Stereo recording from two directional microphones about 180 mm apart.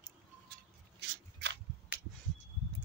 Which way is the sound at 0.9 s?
70° right (ahead or behind).